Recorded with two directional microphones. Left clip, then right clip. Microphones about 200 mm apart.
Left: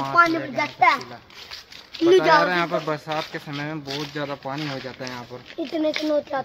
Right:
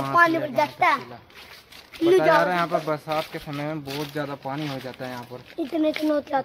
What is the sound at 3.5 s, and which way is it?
Speech, 15° right (ahead or behind).